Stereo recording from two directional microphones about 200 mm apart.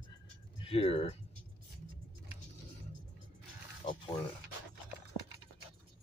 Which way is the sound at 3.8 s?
25° left (ahead or behind).